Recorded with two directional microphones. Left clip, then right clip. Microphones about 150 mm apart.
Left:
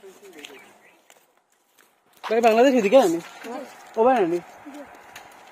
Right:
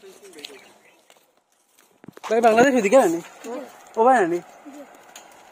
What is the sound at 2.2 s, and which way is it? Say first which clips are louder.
Speech: right 1 dB; 10° right (ahead or behind).